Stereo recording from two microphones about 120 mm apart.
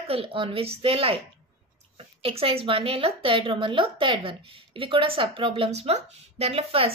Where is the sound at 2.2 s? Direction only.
50° right (ahead or behind).